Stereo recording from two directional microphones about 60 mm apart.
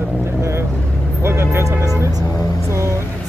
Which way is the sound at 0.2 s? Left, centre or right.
Right.